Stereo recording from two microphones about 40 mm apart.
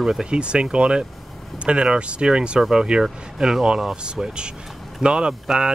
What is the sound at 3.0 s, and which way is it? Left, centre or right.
Speech, centre.